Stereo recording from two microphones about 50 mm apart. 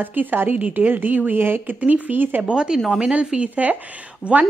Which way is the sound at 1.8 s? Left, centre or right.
Right.